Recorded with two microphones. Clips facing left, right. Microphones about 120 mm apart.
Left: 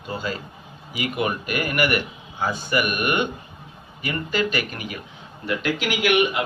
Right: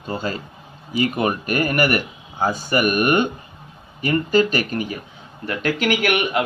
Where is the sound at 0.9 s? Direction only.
35° right (ahead or behind).